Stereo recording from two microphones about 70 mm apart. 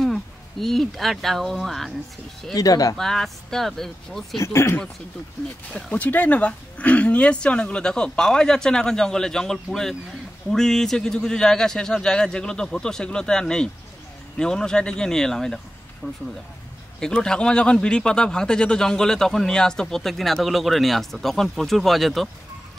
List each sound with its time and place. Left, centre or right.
0.0 s speech: centre
2.5 s speech: left
3.0 s speech: centre
4.4 s speech: left
5.7 s speech: centre
17.0 s speech: centre